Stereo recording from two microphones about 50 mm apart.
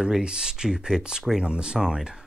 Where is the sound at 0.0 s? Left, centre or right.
Centre.